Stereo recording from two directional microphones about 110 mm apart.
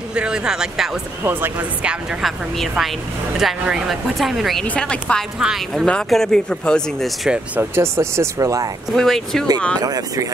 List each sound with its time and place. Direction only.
0.1 s speech: 10° right (ahead or behind)
1.2 s speech: 20° right (ahead or behind)
2.2 s a woman's voice: centre (ahead or behind)
5.4 s a woman's voice: 5° right (ahead or behind)
5.9 s speech: 5° left (ahead or behind)
7.2 s speech: 20° right (ahead or behind)
8.9 s a woman's voice: 5° left (ahead or behind)
9.8 s speech: 35° right (ahead or behind)